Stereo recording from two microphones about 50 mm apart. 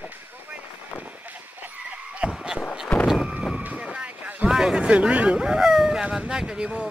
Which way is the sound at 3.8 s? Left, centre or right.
Centre.